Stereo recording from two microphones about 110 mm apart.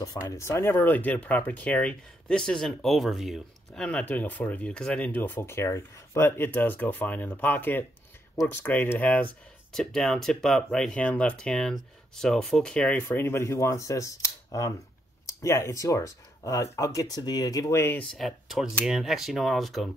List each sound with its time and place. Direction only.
0.0 s speech: 30° left (ahead or behind); by 9.2 s 15° left (ahead or behind)
9.7 s speech: 5° left (ahead or behind); by 18.0 s 20° left (ahead or behind)
18.1 s speech: centre (ahead or behind)